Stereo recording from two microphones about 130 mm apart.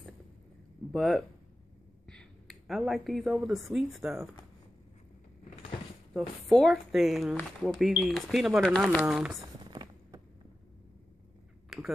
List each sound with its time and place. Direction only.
0.9 s speech: 5° left (ahead or behind)
2.0 s a sound: 5° left (ahead or behind)
2.9 s speech: centre (ahead or behind)
6.1 s speech: centre (ahead or behind)
9.0 s speech: 5° right (ahead or behind)
9.7 s a sound: 35° right (ahead or behind)
11.7 s finger snapping: centre (ahead or behind)